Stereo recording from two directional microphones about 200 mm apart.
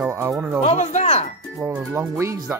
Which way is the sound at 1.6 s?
10° right (ahead or behind).